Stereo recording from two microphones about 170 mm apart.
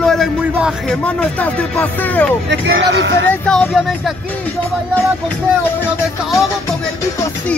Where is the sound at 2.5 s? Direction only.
90° right.